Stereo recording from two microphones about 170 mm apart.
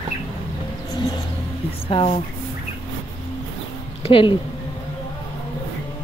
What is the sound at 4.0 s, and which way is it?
Speech, 30° left (ahead or behind).